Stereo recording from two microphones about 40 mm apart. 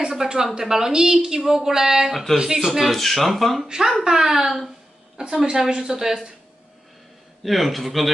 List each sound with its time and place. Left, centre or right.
0.0 s a sound: centre
0.6 s a woman's voice: centre
3.0 s speech: centre
3.6 s a woman's voice: centre
5.1 s a woman's voice: right
7.4 s speech: centre